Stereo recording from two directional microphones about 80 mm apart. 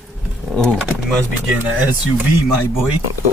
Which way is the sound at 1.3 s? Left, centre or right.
Right.